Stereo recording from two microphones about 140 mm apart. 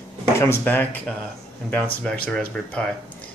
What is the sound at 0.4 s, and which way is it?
Speech, 15° left (ahead or behind).